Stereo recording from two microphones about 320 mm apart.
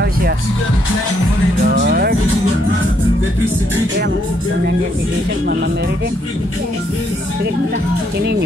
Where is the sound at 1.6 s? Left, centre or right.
Right.